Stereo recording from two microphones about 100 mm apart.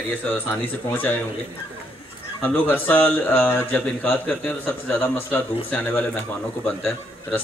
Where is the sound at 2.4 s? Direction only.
20° left (ahead or behind).